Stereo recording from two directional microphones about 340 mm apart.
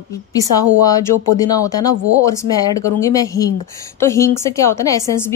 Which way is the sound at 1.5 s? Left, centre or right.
Centre.